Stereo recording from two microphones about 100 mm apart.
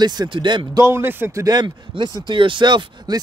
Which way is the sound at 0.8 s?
25° right (ahead or behind).